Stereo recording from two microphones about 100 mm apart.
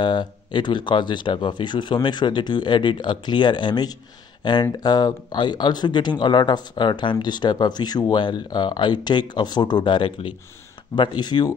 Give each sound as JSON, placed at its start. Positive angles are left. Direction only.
{"t": 0.0, "sound": "speech", "side_deg": 50}